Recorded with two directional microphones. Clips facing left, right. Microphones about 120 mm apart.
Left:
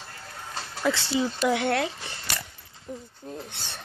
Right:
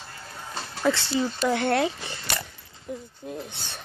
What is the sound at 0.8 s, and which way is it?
Speech, 5° left (ahead or behind).